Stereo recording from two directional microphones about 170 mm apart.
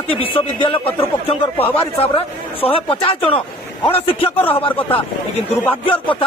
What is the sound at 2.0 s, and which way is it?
A man's voice, 30° left (ahead or behind).